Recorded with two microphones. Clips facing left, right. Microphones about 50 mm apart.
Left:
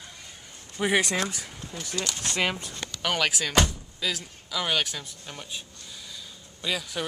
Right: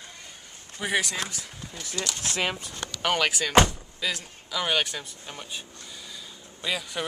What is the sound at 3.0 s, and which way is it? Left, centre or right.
A man's voice, centre.